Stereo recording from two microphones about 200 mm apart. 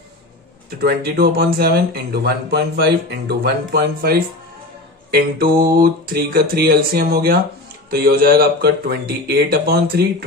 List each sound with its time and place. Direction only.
0.7 s speech: 50° right (ahead or behind)